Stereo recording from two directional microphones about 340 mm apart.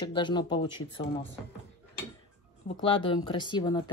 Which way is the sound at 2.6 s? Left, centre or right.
Centre.